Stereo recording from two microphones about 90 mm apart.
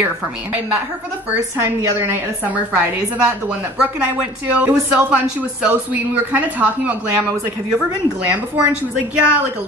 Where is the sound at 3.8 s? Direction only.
15° right (ahead or behind).